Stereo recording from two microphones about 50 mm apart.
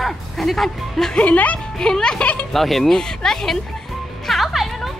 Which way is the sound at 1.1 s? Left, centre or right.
Left.